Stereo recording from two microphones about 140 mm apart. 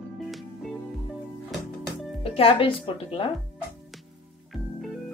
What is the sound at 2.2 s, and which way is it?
Speech, 40° left (ahead or behind).